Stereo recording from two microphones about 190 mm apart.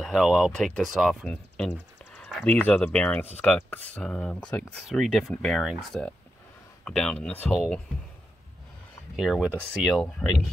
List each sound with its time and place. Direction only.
0.0 s speech: centre (ahead or behind)
9.1 s speech: centre (ahead or behind)